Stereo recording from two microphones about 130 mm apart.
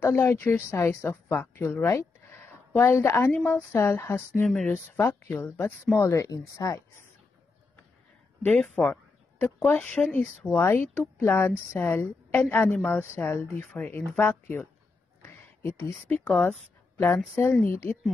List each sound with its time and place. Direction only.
0.0 s a woman's voice: 15° left (ahead or behind)
4.5 s a woman's voice: 5° left (ahead or behind); by 7.1 s 25° left (ahead or behind)
8.5 s a woman's voice: 10° left (ahead or behind)
15.2 s a sound: 20° left (ahead or behind)
16.3 s a woman's voice: 10° left (ahead or behind)